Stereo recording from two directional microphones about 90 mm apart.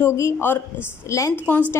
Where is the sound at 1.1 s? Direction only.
40° left (ahead or behind).